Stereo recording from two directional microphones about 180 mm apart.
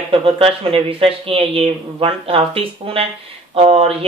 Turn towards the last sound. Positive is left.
turn(degrees=-30)  # may be behind; listen again after turning